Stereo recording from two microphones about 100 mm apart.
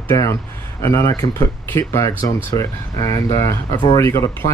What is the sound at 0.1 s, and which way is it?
Speech, 30° left (ahead or behind).